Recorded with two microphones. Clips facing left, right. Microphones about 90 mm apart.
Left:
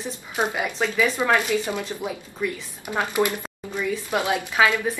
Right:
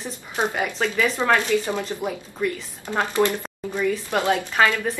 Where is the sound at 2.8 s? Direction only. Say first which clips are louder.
Right 2 dB; 15° left (ahead or behind).